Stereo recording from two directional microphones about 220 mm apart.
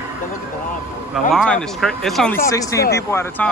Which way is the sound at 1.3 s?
5° left (ahead or behind).